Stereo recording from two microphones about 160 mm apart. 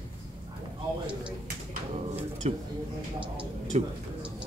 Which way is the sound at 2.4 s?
40° right (ahead or behind).